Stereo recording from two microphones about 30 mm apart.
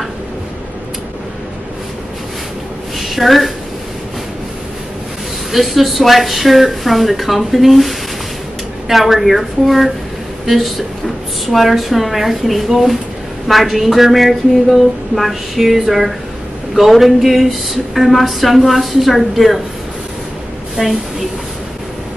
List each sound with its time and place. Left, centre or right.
3.0 s a sound: centre
5.5 s speech: centre
20.8 s a woman's voice: centre